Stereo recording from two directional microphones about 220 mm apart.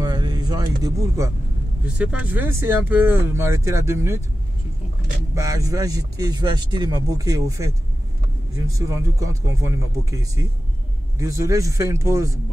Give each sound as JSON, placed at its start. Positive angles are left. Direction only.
{"t": 0.0, "sound": "a sound", "side_deg": -20}
{"t": 2.0, "sound": "speech", "side_deg": -5}
{"t": 5.3, "sound": "speech", "side_deg": -15}